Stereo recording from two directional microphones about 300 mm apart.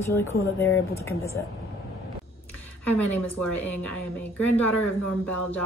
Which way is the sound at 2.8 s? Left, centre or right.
Centre.